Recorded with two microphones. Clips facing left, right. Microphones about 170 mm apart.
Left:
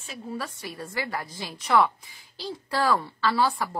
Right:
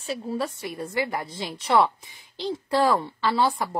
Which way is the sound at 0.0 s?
35° right (ahead or behind).